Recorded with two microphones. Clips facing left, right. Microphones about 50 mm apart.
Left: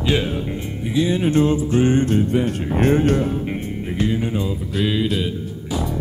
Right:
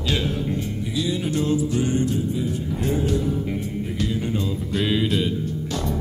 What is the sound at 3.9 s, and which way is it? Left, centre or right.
Music, left.